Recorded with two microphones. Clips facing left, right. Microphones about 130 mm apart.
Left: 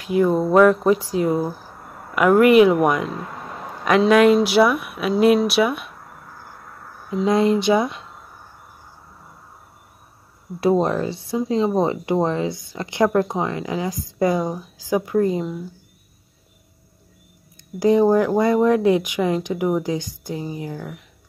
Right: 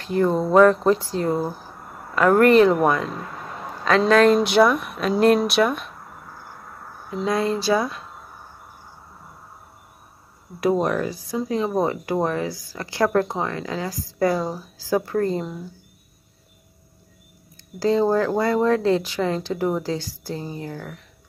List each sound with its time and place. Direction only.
0.0 s speech: 10° left (ahead or behind)
4.1 s speech: 10° left (ahead or behind)
7.2 s speech: 20° left (ahead or behind)
10.6 s speech: 30° left (ahead or behind); by 15.4 s 10° left (ahead or behind)
17.7 s speech: 15° left (ahead or behind)